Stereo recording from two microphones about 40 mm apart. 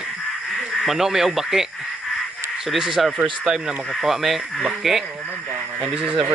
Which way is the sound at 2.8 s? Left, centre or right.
Centre.